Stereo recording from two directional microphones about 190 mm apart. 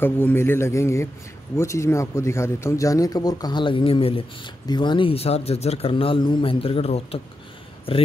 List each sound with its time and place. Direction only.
0.0 s a man's voice: 10° left (ahead or behind); by 8.0 s 30° left (ahead or behind)